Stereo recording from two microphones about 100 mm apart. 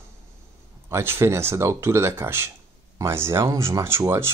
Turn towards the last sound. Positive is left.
turn(degrees=-25)  # may be behind; listen again after turning